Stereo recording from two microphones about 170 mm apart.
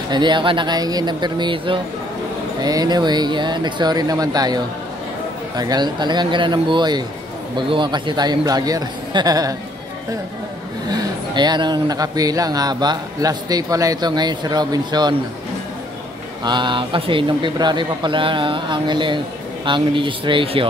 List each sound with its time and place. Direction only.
0.1 s a man's voice: 25° right (ahead or behind)
5.6 s a man's voice: 25° right (ahead or behind)
10.9 s a man's voice: 25° right (ahead or behind)
16.4 s a man's voice: 25° right (ahead or behind)